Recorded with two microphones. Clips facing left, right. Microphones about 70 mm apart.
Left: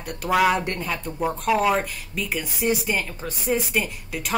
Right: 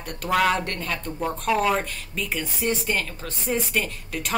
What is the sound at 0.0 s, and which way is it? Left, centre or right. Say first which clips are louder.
Speech: left 2 dB; centre.